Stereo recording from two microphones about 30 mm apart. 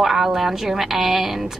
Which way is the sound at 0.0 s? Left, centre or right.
Centre.